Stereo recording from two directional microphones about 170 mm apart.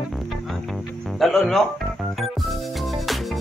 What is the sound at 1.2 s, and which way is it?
Speech, centre (ahead or behind).